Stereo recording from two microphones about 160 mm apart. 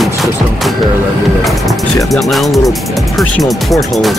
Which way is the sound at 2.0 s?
Centre (ahead or behind).